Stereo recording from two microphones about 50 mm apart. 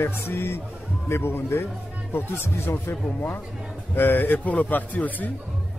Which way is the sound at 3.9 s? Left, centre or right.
Left.